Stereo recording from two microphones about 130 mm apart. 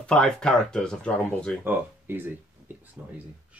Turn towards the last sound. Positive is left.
turn(degrees=-5)  # may be behind; listen again after turning